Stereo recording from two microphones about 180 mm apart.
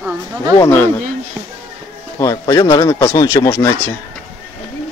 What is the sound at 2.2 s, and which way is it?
Speech, 20° left (ahead or behind).